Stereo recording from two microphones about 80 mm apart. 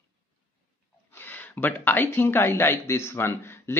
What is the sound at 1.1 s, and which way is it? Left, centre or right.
Speech, left.